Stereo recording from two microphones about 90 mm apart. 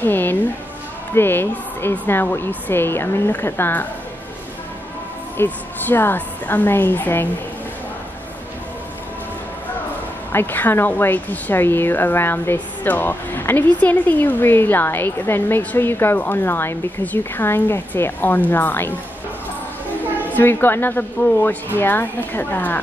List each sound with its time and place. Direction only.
0.0 s music: 20° left (ahead or behind)
1.1 s a woman's voice: 25° left (ahead or behind)
5.4 s a woman's voice: 25° left (ahead or behind)
10.3 s a woman's voice: 25° left (ahead or behind)
20.3 s a woman's voice: 25° left (ahead or behind)